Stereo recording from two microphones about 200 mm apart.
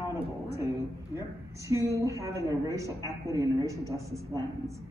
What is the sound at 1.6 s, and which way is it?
A man's voice, 15° right (ahead or behind).